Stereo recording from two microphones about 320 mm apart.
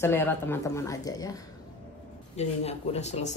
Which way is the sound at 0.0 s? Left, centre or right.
Centre.